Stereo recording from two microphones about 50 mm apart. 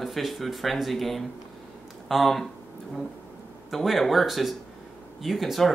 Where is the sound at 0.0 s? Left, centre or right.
Centre.